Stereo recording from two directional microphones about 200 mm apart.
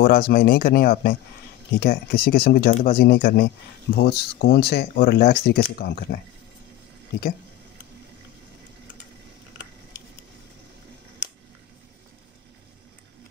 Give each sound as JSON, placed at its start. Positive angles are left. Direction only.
{"t": 0.0, "sound": "speech", "side_deg": 45}